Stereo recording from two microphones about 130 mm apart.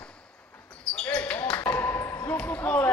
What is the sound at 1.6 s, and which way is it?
Ping, 15° left (ahead or behind).